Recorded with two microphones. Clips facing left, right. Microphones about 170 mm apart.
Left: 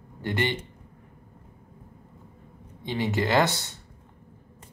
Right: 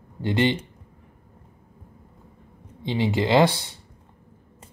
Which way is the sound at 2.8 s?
20° right (ahead or behind).